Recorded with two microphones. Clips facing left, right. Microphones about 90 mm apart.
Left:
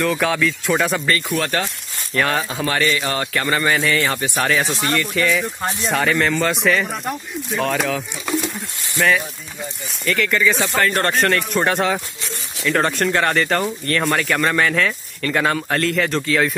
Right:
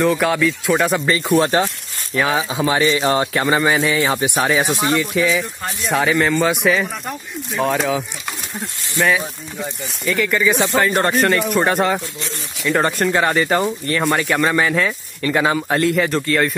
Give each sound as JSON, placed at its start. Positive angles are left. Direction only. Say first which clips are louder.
{"t": 0.0, "sound": "speech", "louder": "right 3 dB", "side_deg": -5}
{"t": 1.4, "sound": "speech", "louder": "right 5 dB", "side_deg": -25}
{"t": 2.1, "sound": "speech", "louder": "right 2 dB", "side_deg": -5}
{"t": 5.6, "sound": "speech", "louder": "left 3 dB", "side_deg": 20}
{"t": 5.9, "sound": "speech", "louder": "right 2 dB", "side_deg": -5}
{"t": 8.9, "sound": "speech", "louder": "even", "side_deg": -5}